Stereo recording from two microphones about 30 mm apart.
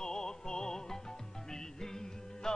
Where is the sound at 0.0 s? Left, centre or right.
Centre.